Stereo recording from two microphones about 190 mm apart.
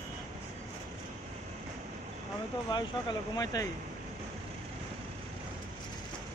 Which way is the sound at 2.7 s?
25° left (ahead or behind).